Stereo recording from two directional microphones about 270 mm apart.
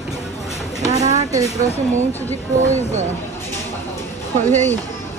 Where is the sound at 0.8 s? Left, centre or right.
Right.